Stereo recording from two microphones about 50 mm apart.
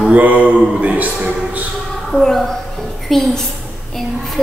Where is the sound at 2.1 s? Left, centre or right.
Centre.